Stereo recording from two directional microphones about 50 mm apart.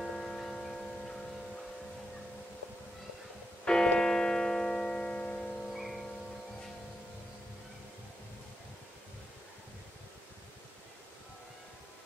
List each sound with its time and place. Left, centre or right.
0.0 s music: centre
3.6 s music: centre
5.6 s music: centre